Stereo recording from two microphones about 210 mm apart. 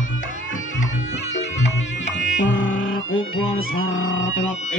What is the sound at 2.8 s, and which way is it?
Music, 70° left (ahead or behind).